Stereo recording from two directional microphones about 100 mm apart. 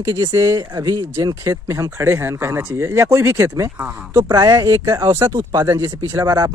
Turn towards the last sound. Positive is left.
turn(degrees=-35)  # may be behind; listen again after turning